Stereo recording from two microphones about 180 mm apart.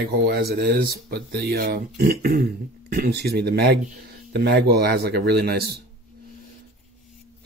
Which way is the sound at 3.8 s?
50° right (ahead or behind).